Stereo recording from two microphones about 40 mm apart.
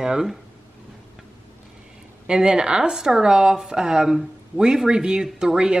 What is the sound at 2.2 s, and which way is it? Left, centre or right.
A woman's voice, right.